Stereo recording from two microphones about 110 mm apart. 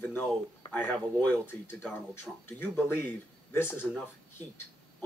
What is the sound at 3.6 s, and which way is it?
Speech, 20° left (ahead or behind).